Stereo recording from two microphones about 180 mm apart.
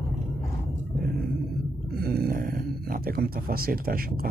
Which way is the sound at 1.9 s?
60° right (ahead or behind).